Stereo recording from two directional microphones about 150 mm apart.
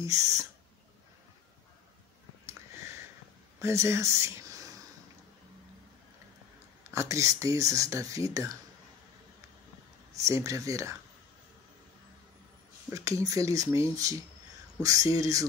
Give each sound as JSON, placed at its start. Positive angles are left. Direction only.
{"t": 0.0, "sound": "speech", "side_deg": -20}
{"t": 3.6, "sound": "speech", "side_deg": -20}
{"t": 6.9, "sound": "speech", "side_deg": -20}
{"t": 10.1, "sound": "speech", "side_deg": -20}
{"t": 12.9, "sound": "speech", "side_deg": -20}